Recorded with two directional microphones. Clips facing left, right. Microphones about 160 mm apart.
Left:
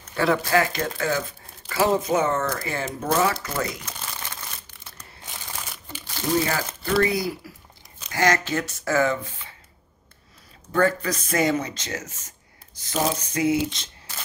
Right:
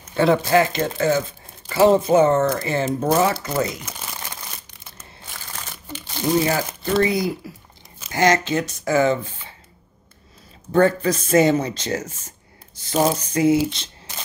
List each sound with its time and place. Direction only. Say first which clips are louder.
0.0 s speech: right 5 dB; 20° right (ahead or behind)
6.1 s speech: right 4 dB; 20° right (ahead or behind)
10.7 s speech: right 5 dB; 25° right (ahead or behind)
12.9 s a sound: right 5 dB; 30° right (ahead or behind)
13.7 s squish: right 3 dB; 20° right (ahead or behind)